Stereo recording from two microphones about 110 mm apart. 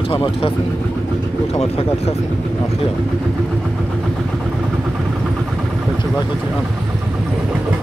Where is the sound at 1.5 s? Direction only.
70° left (ahead or behind).